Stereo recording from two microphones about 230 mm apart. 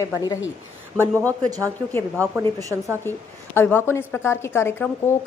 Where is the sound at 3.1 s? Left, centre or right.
Centre.